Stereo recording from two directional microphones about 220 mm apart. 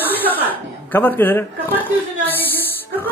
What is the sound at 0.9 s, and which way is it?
Speech, 10° left (ahead or behind).